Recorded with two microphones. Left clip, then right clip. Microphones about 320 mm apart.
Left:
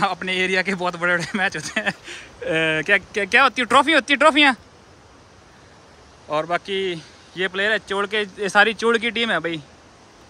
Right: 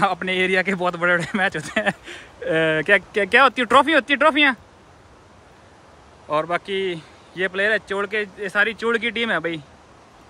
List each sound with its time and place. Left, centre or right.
0.0 s speech: centre
6.2 s speech: centre